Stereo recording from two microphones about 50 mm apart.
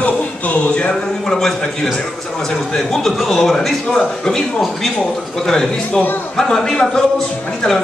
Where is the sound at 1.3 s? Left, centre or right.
Centre.